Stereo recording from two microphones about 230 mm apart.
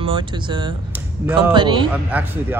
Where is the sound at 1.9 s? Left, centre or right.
Centre.